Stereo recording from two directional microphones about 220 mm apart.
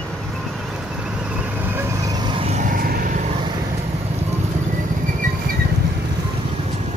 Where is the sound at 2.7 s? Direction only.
40° right (ahead or behind).